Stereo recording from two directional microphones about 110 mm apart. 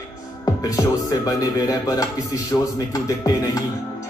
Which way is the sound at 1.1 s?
35° left (ahead or behind).